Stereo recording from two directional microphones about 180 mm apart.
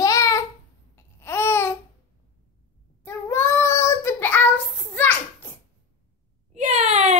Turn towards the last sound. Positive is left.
turn(degrees=-40)  # may be behind; listen again after turning